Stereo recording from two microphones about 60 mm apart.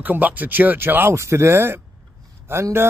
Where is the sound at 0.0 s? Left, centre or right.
Right.